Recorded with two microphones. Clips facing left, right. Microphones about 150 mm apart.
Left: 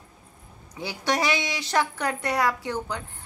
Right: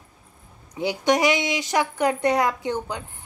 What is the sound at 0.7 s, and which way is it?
A woman's voice, 20° right (ahead or behind).